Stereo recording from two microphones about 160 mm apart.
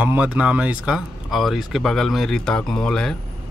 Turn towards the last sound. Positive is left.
turn(degrees=5)  # may be behind; listen again after turning